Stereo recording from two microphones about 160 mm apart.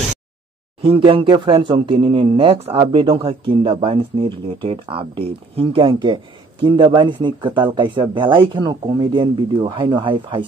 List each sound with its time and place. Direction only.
0.8 s speech: 35° right (ahead or behind)